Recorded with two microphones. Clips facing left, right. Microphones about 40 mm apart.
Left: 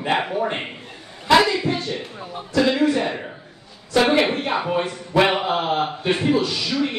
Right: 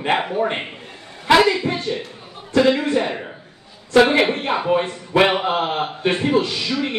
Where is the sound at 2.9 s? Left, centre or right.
Right.